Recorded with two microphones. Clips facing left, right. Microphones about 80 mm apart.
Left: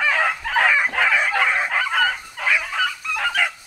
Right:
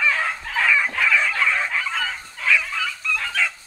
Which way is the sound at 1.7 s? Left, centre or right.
Left.